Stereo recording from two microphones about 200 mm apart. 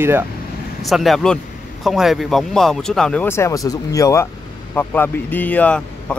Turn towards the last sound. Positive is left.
turn(degrees=5)  # may be behind; listen again after turning